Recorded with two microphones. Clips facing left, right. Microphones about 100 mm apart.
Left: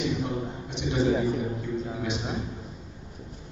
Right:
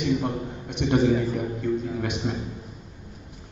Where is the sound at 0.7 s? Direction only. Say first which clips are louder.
Right 5 dB; 55° right (ahead or behind).